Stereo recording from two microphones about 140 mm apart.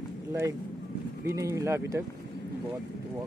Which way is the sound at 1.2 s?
20° right (ahead or behind).